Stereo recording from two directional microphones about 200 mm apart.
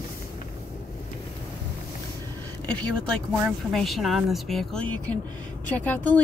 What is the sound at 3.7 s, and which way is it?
A woman's voice, centre (ahead or behind).